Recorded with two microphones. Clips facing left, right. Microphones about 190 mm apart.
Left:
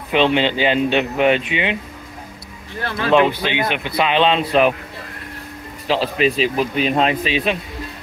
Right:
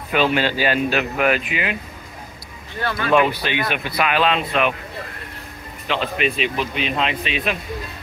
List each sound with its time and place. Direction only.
0.1 s speech: 20° left (ahead or behind)
2.9 s speech: 25° left (ahead or behind)
5.9 s speech: 35° left (ahead or behind)